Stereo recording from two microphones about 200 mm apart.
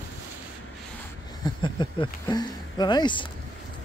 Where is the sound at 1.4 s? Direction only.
25° left (ahead or behind).